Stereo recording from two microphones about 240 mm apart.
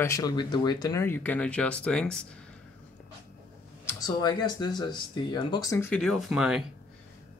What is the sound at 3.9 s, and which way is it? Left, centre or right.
Speech, centre.